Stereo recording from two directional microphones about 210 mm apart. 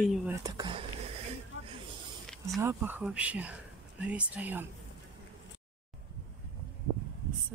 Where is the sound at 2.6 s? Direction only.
10° right (ahead or behind).